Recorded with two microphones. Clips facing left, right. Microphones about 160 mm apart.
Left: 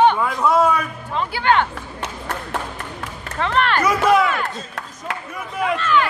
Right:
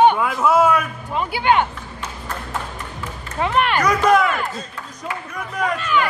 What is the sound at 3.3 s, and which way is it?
Speech, 10° right (ahead or behind).